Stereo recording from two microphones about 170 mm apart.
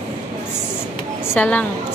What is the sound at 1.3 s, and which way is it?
Speech, 10° left (ahead or behind).